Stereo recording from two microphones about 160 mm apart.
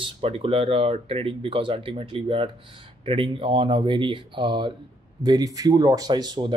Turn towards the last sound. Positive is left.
turn(degrees=-30)  # may be behind; listen again after turning